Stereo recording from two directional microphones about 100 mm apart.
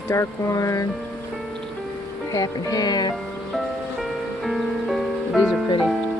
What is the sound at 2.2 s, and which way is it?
Music, 35° left (ahead or behind).